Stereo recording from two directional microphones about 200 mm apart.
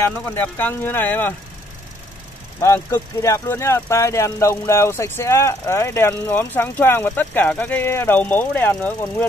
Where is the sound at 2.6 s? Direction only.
15° left (ahead or behind).